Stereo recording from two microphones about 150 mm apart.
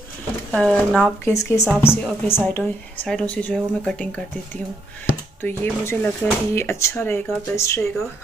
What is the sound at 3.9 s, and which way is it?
Speech, 10° left (ahead or behind).